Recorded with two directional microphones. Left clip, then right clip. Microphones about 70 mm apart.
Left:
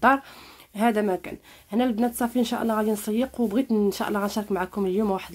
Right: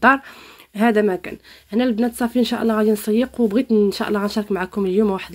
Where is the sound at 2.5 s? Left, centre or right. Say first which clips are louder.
Right 6 dB; right.